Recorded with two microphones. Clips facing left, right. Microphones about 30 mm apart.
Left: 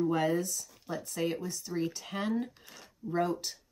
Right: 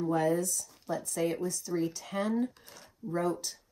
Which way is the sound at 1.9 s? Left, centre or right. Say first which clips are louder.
Right 1 dB; left.